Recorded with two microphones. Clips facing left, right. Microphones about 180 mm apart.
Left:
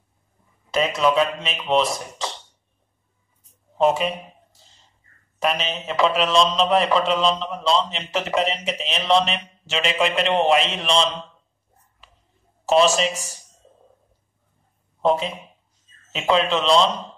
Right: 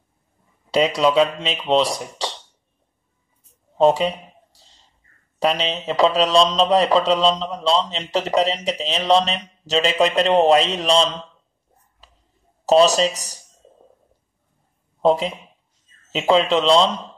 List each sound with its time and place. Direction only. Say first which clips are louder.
0.9 s a man's voice: even; 30° right (ahead or behind)
3.7 s a sound: right 3 dB; 30° right (ahead or behind)
5.4 s a man's voice: right 3 dB; 35° right (ahead or behind)
12.6 s a man's voice: right 3 dB; 35° right (ahead or behind)
16.1 s a man's voice: right 3 dB; 30° right (ahead or behind)